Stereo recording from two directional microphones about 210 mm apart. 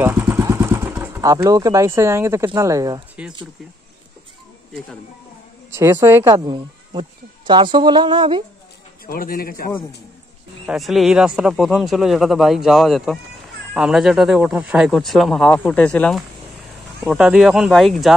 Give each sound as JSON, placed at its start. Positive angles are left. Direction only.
{"t": 0.0, "sound": "speech", "side_deg": -10}
{"t": 3.2, "sound": "speech", "side_deg": -5}
{"t": 5.7, "sound": "speech", "side_deg": -10}
{"t": 9.0, "sound": "a man's voice", "side_deg": 45}
{"t": 10.7, "sound": "speech", "side_deg": 0}